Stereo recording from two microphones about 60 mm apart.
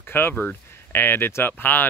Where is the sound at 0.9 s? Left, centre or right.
Left.